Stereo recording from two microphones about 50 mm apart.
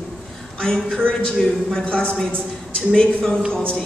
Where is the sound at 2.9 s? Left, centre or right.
Centre.